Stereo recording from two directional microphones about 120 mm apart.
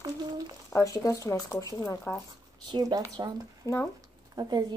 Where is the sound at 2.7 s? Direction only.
30° right (ahead or behind).